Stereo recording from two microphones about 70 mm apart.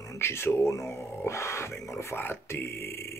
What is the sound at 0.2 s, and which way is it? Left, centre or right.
Speech, left.